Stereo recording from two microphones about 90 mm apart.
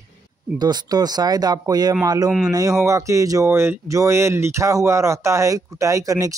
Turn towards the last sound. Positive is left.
turn(degrees=-40)  # may be behind; listen again after turning